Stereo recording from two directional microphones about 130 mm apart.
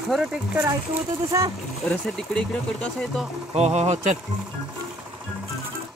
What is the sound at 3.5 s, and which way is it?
Speech, 60° right (ahead or behind).